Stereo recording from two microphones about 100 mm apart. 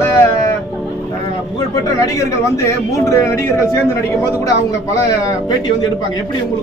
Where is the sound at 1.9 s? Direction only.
35° left (ahead or behind).